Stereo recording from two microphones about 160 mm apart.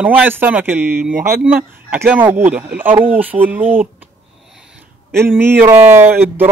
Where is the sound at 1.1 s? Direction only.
60° right (ahead or behind).